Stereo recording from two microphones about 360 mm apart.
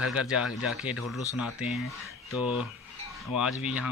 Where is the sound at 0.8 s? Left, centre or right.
Centre.